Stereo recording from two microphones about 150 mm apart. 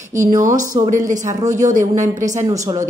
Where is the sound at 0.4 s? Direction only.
60° right (ahead or behind).